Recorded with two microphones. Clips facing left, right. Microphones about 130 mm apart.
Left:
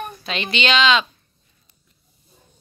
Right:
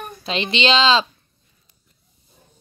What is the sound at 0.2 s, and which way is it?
Speech, 30° right (ahead or behind).